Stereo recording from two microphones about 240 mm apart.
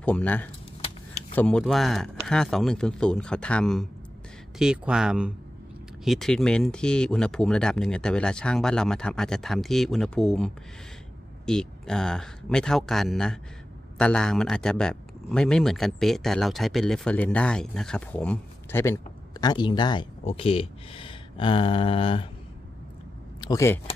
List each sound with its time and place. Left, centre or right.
0.0 s speech: centre; by 22.3 s left
23.4 s speech: centre